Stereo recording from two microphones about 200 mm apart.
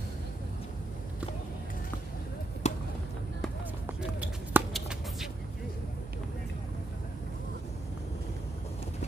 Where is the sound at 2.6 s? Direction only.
30° left (ahead or behind).